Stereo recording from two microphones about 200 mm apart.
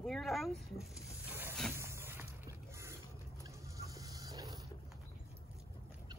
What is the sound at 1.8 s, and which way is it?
Music, 10° right (ahead or behind).